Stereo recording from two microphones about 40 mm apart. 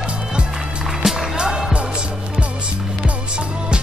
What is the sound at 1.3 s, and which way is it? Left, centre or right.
Music, centre.